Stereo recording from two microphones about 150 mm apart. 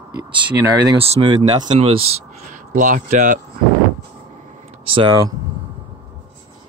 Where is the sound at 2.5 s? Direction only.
60° right (ahead or behind).